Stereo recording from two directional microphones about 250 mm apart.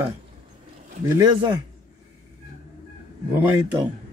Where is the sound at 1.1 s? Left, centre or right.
Centre.